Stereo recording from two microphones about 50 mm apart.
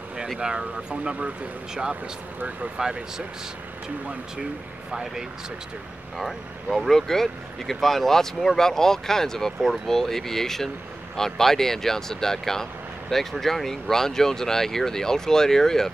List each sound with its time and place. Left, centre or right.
0.4 s speech: centre
2.8 s speech: centre
6.1 s speech: centre